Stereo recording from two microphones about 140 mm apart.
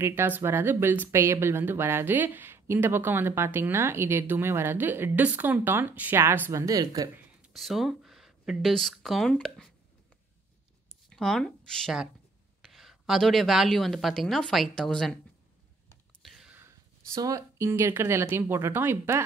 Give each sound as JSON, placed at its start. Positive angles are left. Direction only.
{"t": 0.0, "sound": "speech", "side_deg": -15}
{"t": 7.4, "sound": "speech", "side_deg": 0}
{"t": 11.1, "sound": "a woman's voice", "side_deg": 5}
{"t": 16.2, "sound": "a sound", "side_deg": 0}
{"t": 16.5, "sound": "speech", "side_deg": -20}